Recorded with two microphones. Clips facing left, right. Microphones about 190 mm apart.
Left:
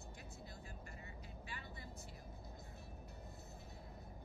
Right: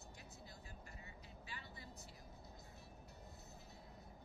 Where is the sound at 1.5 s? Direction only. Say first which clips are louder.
Left 2 dB; 55° left (ahead or behind).